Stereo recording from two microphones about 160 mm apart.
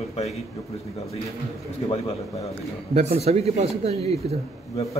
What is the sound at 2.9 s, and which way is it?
Speech, 40° right (ahead or behind).